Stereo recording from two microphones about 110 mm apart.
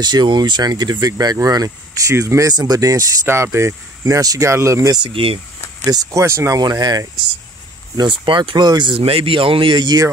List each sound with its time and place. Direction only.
0.0 s speech: 40° right (ahead or behind)
4.9 s speech: 50° right (ahead or behind)
5.9 s speech: 30° right (ahead or behind)
6.6 s speech: 40° right (ahead or behind)
8.9 s speech: 55° right (ahead or behind)